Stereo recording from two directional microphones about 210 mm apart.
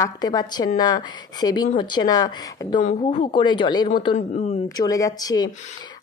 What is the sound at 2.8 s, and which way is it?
Speech, 30° left (ahead or behind).